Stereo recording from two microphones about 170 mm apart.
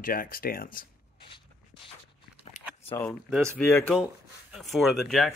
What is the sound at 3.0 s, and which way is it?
Speech, 15° left (ahead or behind).